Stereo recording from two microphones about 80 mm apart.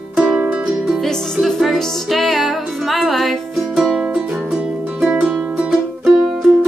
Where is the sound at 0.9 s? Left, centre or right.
Centre.